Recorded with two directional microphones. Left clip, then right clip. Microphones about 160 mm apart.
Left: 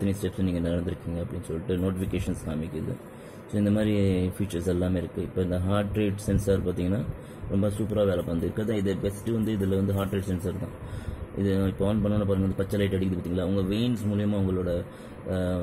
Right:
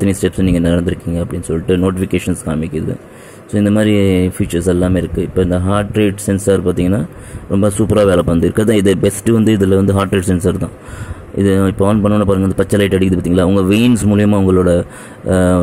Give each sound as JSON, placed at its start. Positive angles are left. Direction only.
{"t": 0.0, "sound": "speech", "side_deg": -35}